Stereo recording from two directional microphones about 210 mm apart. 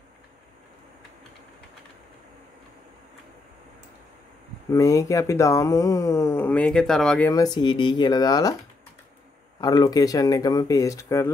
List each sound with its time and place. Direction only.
4.7 s speech: 15° left (ahead or behind)
9.6 s speech: 20° left (ahead or behind)